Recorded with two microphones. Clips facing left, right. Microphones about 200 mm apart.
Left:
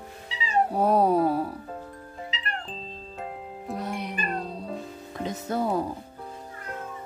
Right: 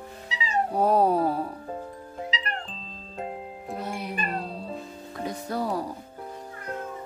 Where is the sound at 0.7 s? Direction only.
Centre (ahead or behind).